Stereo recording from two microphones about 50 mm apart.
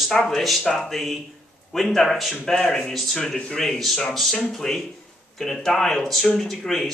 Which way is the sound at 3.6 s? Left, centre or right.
Centre.